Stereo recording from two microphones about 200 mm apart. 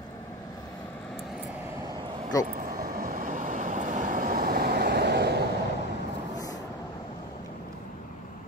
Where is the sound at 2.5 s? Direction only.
45° right (ahead or behind).